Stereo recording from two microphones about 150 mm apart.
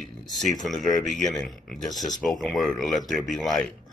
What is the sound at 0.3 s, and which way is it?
Speech, centre (ahead or behind).